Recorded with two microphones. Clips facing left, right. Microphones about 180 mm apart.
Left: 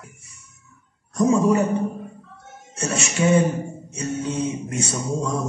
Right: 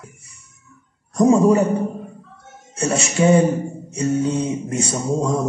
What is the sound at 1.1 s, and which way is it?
Music, 35° right (ahead or behind).